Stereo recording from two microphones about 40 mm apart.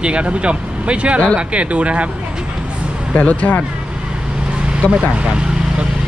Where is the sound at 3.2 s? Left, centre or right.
Left.